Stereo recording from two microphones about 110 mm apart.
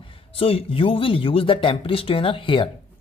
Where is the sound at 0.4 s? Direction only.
55° left (ahead or behind).